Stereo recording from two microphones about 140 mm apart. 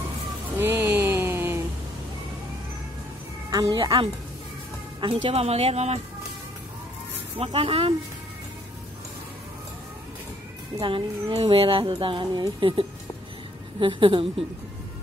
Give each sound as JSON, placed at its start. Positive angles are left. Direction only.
{"t": 0.6, "sound": "a sound", "side_deg": -15}
{"t": 3.4, "sound": "speech", "side_deg": -25}
{"t": 7.3, "sound": "speech", "side_deg": -40}
{"t": 10.8, "sound": "speech", "side_deg": -35}